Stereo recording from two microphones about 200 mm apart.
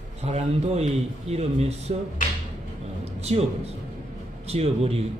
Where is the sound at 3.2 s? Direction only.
30° right (ahead or behind).